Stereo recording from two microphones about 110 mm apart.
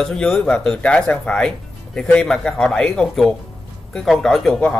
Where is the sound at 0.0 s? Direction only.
5° left (ahead or behind).